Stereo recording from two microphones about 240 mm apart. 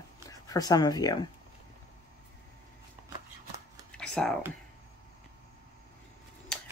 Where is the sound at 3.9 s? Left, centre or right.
Centre.